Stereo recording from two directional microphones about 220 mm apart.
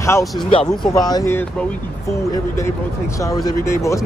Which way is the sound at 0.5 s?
20° left (ahead or behind).